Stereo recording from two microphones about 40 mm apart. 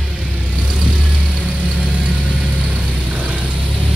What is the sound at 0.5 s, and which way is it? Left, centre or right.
Vehicle, right.